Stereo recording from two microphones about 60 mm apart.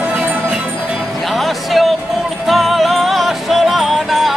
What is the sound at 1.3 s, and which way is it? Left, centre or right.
Music, centre.